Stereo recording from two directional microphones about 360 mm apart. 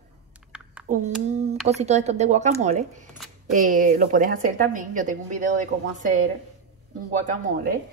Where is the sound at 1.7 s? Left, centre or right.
Centre.